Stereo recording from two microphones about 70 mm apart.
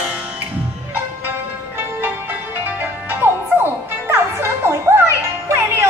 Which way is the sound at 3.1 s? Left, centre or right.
Right.